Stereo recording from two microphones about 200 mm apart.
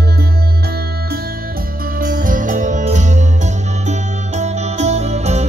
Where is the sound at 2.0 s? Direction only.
40° right (ahead or behind).